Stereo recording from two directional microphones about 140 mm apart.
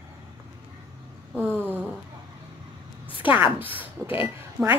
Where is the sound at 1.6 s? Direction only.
15° right (ahead or behind).